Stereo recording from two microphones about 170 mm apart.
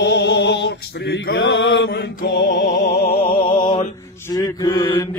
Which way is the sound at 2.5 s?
50° left (ahead or behind).